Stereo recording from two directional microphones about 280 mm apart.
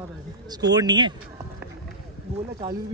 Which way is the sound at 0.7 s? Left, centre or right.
Centre.